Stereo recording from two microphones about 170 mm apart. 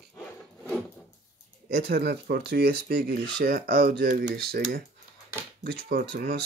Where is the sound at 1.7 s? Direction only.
70° right (ahead or behind).